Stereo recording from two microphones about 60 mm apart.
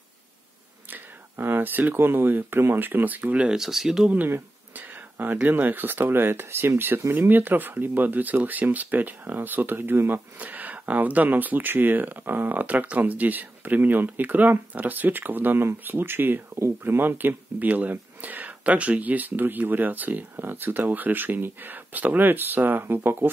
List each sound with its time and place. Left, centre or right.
0.8 s speech: right
3.4 s speech: centre
4.7 s speech: right